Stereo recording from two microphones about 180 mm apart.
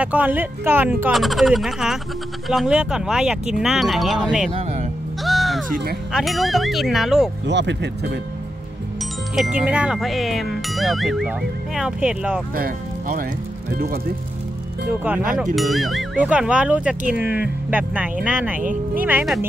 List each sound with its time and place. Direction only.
0.0 s speech: 10° right (ahead or behind)
1.1 s speech: centre (ahead or behind)
4.5 s speech: 30° right (ahead or behind)
5.2 s music: centre (ahead or behind)
6.1 s speech: centre (ahead or behind)
7.4 s speech: 75° right (ahead or behind)
9.6 s speech: 5° right (ahead or behind)
12.5 s speech: 50° right (ahead or behind)
14.9 s speech: 5° right (ahead or behind)